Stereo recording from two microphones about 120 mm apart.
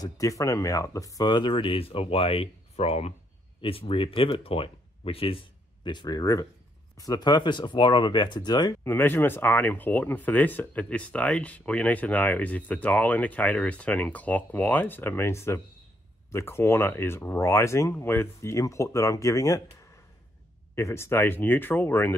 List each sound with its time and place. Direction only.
0.0 s speech: 30° left (ahead or behind); by 5.4 s 50° left (ahead or behind)
5.9 s speech: 35° left (ahead or behind)
8.8 s speech: 20° left (ahead or behind)
20.7 s speech: 20° left (ahead or behind)